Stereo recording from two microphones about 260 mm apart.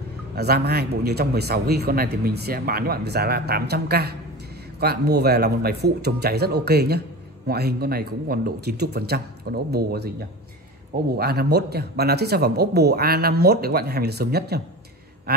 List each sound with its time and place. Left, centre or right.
0.4 s speech: right
11.1 s speech: right